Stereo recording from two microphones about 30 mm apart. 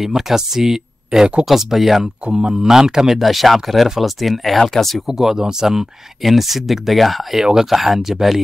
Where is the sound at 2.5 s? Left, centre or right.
Centre.